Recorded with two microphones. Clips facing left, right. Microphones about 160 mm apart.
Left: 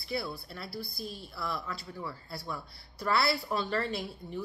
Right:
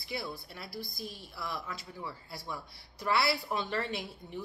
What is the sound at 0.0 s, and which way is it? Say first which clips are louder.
A woman's voice: left 3 dB; 15° right (ahead or behind).